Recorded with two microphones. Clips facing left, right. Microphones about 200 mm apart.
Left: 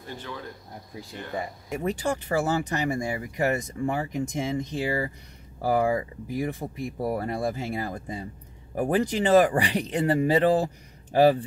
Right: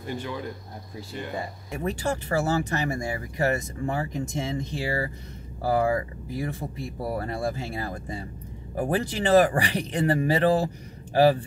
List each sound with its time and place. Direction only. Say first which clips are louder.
0.0 s speech: right 5 dB; 10° right (ahead or behind)
1.3 s speech: left 6 dB; 20° left (ahead or behind)